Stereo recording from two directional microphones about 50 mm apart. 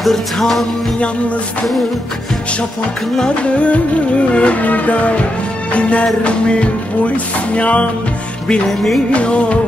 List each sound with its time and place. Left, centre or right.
0.0 s music: centre
3.5 s music: left
8.6 s music: centre
9.1 s music: left